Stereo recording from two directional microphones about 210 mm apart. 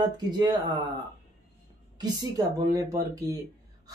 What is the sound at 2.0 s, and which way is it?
Speech, 20° right (ahead or behind).